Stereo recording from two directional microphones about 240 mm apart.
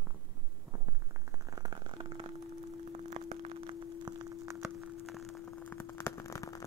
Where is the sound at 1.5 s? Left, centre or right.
Centre.